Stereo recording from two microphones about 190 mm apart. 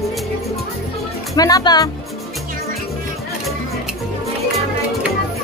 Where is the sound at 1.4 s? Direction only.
20° left (ahead or behind).